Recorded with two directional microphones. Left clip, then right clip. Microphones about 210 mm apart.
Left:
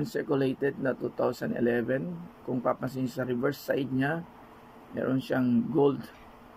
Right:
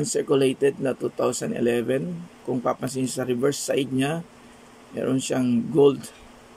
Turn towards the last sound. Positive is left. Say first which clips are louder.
# right 7 dB
turn(degrees=-10)  # may be behind; listen again after turning